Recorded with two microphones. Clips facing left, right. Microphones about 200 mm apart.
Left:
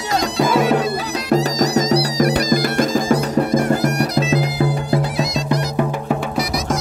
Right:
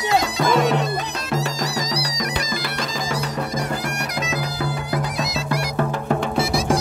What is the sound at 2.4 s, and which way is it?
Music, 40° left (ahead or behind).